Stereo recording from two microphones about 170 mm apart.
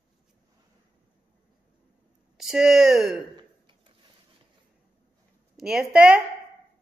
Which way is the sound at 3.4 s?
30° right (ahead or behind).